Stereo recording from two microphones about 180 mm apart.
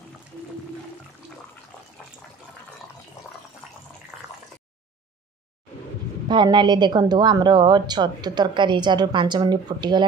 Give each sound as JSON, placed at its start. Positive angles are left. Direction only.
{"t": 3.2, "sound": "water", "side_deg": 15}
{"t": 6.2, "sound": "a woman's voice", "side_deg": -25}